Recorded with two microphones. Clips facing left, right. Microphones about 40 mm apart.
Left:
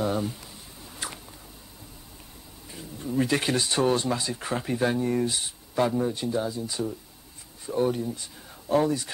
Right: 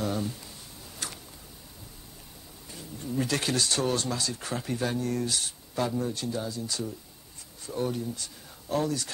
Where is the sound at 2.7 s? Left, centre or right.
Centre.